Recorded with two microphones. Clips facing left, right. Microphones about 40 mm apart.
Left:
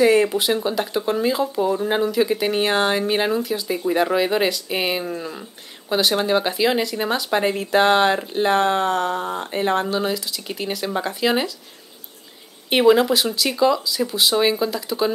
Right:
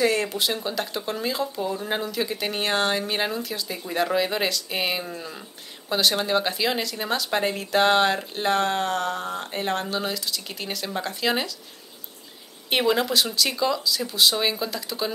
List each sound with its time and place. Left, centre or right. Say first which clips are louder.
0.0 s speech: left 7 dB; centre
12.6 s speech: left 7 dB; centre